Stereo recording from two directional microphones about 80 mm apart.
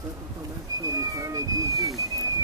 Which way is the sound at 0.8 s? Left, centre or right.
Right.